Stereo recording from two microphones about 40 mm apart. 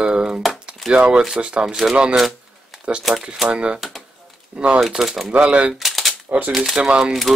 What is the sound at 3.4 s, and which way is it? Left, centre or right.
Speech, right.